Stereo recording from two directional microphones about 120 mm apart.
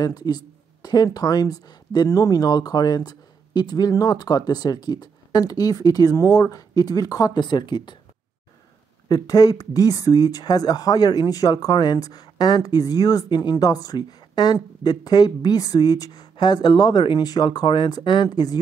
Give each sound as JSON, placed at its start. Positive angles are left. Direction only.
{"t": 0.0, "sound": "speech", "side_deg": 35}
{"t": 9.1, "sound": "speech", "side_deg": 30}